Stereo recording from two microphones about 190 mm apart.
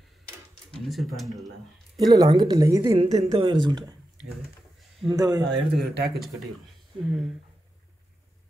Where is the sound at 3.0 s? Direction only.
35° right (ahead or behind).